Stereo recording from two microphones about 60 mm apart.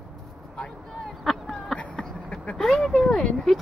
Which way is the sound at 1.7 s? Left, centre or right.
Centre.